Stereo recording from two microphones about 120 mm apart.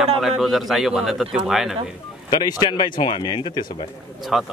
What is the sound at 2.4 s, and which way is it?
Speech, 40° left (ahead or behind).